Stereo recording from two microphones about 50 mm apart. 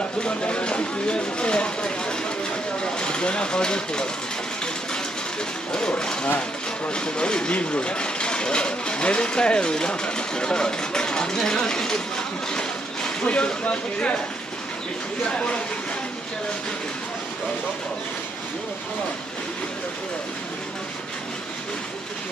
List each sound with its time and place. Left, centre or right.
0.2 s speech: left
5.7 s speech: centre
12.5 s a sound: centre
15.2 s speech: left